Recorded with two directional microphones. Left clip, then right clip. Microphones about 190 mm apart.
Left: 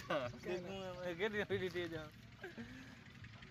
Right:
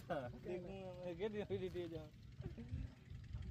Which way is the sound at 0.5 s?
Centre (ahead or behind).